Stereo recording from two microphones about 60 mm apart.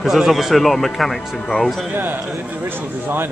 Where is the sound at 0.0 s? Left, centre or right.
Centre.